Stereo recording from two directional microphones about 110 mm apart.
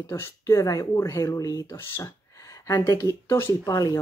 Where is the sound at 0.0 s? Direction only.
25° left (ahead or behind).